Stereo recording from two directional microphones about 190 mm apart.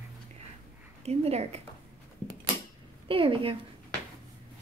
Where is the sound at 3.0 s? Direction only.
30° right (ahead or behind).